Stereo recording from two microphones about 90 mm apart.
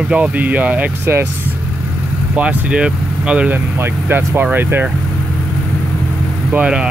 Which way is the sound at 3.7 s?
25° right (ahead or behind).